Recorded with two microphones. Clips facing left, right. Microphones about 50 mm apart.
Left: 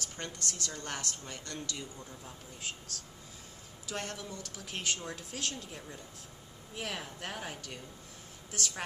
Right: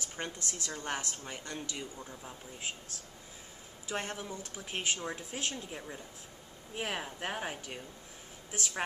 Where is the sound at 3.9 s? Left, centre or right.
Right.